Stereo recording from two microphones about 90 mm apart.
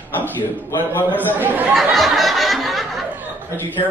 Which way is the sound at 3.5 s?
25° left (ahead or behind).